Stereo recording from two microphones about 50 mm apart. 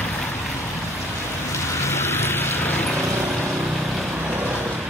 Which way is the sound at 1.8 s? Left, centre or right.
Left.